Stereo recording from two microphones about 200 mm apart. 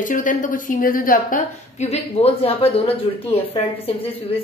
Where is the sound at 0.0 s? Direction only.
40° left (ahead or behind).